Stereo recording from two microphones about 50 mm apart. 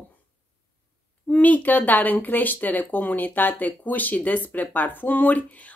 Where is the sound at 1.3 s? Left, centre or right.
Left.